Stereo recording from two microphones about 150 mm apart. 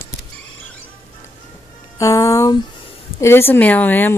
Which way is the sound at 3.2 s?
15° left (ahead or behind).